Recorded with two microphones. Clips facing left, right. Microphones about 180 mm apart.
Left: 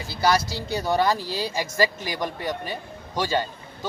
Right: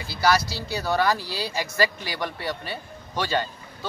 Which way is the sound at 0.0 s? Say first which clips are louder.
Even; 20° left (ahead or behind).